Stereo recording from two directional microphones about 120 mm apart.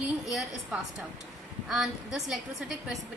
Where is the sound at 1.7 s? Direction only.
5° right (ahead or behind).